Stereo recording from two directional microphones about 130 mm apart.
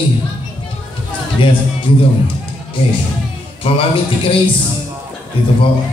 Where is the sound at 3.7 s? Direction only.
45° left (ahead or behind).